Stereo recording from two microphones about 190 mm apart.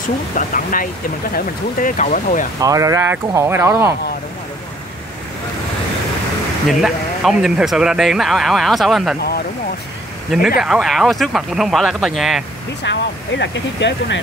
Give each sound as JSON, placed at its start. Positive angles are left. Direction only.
{"t": 0.0, "sound": "speech", "side_deg": 45}
{"t": 2.6, "sound": "speech", "side_deg": -15}
{"t": 6.7, "sound": "speech", "side_deg": 0}
{"t": 10.6, "sound": "speech", "side_deg": 0}
{"t": 12.8, "sound": "speech", "side_deg": 65}